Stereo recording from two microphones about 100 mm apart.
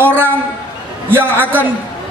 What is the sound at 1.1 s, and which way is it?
Speech, 20° right (ahead or behind).